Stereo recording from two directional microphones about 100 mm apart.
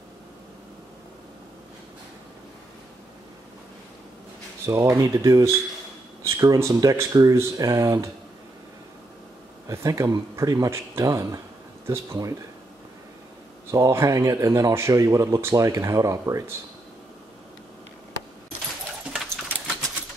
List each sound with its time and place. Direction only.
4.6 s speech: 30° right (ahead or behind)
9.7 s speech: 35° right (ahead or behind)
13.7 s speech: 30° right (ahead or behind)